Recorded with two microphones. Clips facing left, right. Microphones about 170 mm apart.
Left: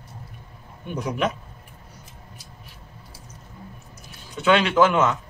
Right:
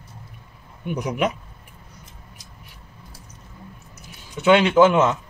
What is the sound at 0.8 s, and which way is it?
Speech, 15° right (ahead or behind).